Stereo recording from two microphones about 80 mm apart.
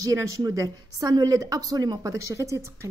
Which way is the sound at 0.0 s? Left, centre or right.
Right.